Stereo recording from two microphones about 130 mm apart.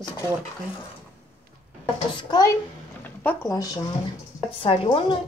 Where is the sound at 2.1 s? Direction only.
30° left (ahead or behind).